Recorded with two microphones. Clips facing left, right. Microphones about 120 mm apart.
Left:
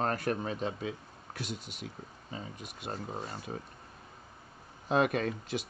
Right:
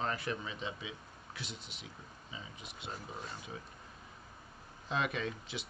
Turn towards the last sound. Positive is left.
turn(degrees=50)  # may be behind; listen again after turning